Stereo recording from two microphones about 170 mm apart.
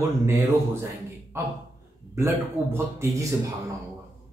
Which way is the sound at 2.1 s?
15° right (ahead or behind).